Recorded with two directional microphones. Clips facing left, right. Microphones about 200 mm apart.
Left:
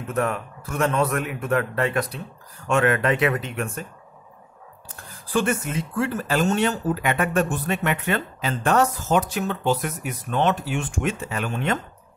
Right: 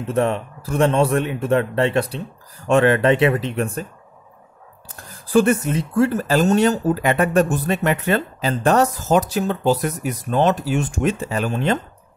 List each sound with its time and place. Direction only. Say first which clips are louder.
0.0 s a man's voice: right 5 dB; 30° right (ahead or behind)
5.3 s speech: right 7 dB; 40° right (ahead or behind)